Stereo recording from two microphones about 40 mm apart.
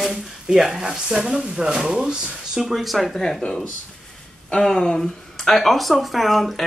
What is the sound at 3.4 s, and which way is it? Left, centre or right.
Speech, left.